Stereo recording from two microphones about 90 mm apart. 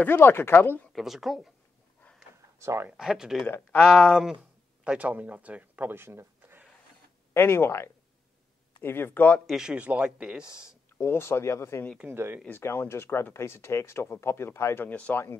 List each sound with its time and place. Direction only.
0.0 s speech: 25° left (ahead or behind)
0.9 s speech: centre (ahead or behind)
2.6 s speech: 30° right (ahead or behind)
3.0 s speech: 5° right (ahead or behind); by 6.6 s 25° right (ahead or behind)
7.3 s speech: 25° left (ahead or behind)
9.5 s speech: 10° right (ahead or behind)
11.0 s speech: 30° left (ahead or behind)
12.1 s speech: 25° right (ahead or behind)
12.4 s speech: 25° left (ahead or behind)
14.9 s speech: 20° left (ahead or behind)